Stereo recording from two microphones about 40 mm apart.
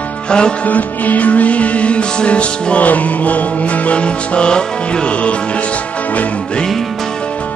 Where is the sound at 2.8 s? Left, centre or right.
Left.